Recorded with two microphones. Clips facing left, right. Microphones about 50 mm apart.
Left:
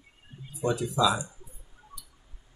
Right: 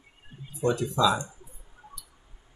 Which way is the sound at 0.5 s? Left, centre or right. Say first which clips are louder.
Right 2 dB; centre.